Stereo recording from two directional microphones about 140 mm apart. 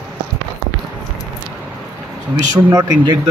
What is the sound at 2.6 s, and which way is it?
Speech, 25° right (ahead or behind).